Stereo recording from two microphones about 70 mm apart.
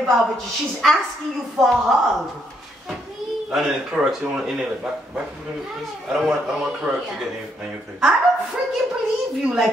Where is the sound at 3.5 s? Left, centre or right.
Centre.